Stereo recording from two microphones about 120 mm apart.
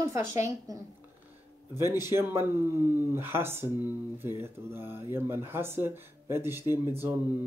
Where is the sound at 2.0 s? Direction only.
20° right (ahead or behind).